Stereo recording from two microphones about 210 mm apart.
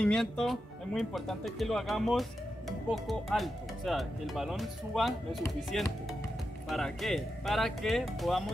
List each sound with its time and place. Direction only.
0.0 s speech: centre (ahead or behind)